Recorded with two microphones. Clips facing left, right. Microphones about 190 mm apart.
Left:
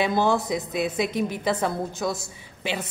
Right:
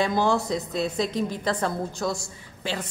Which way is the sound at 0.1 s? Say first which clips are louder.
Left 1 dB; 20° left (ahead or behind).